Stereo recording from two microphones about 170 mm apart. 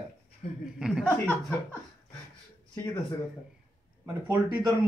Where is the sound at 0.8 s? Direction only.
5° right (ahead or behind).